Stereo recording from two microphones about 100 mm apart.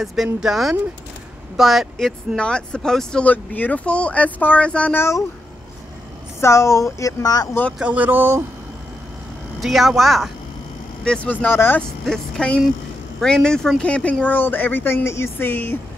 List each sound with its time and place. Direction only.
0.0 s speech: centre (ahead or behind)
6.4 s speech: 30° left (ahead or behind)
7.8 s speech: 15° right (ahead or behind)
9.6 s speech: centre (ahead or behind)
11.4 s speech: 20° left (ahead or behind)
12.1 s speech: 10° left (ahead or behind)